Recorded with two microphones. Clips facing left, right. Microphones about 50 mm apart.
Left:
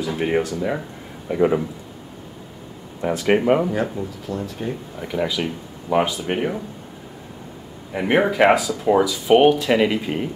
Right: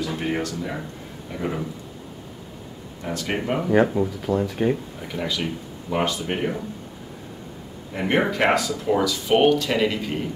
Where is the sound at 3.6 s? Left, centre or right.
Centre.